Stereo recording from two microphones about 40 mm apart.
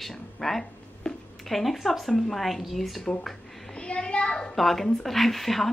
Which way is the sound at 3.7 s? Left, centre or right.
Left.